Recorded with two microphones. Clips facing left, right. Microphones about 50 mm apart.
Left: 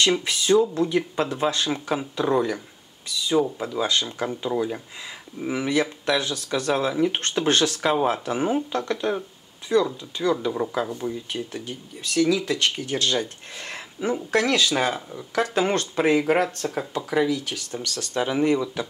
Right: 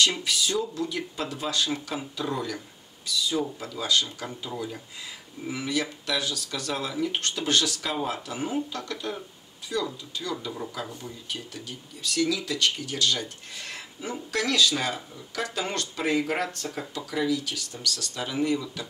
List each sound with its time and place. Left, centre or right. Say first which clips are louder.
0.2 s speech: left 8 dB; left
3.6 s speech: left 3 dB; left